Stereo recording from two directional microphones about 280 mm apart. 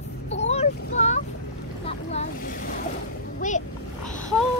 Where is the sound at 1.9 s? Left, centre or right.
Left.